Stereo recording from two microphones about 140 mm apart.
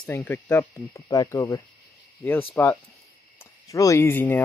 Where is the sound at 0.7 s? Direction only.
30° left (ahead or behind).